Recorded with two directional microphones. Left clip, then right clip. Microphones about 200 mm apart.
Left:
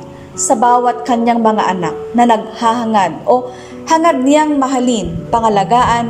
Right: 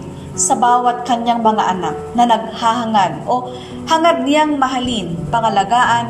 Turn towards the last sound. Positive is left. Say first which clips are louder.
# left 2 dB
turn(degrees=15)  # may be behind; listen again after turning